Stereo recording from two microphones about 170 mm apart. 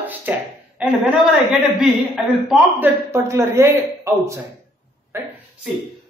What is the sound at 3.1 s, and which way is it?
Speech, 15° right (ahead or behind).